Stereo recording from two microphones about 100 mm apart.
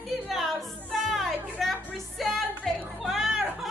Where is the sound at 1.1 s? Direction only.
Centre (ahead or behind).